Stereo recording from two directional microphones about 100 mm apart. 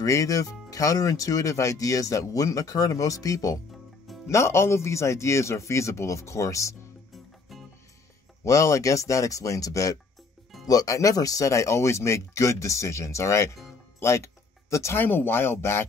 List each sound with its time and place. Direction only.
0.0 s speech: 35° left (ahead or behind)
8.5 s speech: 30° left (ahead or behind)